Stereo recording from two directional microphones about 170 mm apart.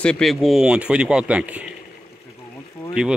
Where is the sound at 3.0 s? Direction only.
5° right (ahead or behind).